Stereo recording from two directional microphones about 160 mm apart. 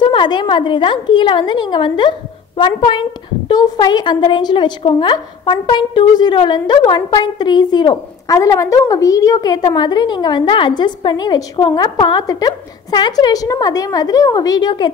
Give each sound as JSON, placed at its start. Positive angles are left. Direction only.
{"t": 0.0, "sound": "a woman's voice", "side_deg": 30}